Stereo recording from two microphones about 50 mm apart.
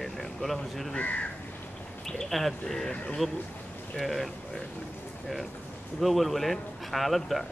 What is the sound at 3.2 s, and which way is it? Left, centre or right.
A man's voice, centre.